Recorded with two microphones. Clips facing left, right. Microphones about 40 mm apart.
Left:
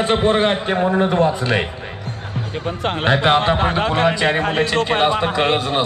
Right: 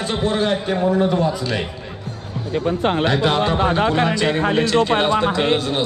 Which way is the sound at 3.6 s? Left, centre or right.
Left.